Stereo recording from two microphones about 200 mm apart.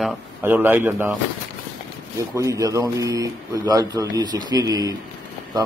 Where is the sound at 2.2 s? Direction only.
15° right (ahead or behind).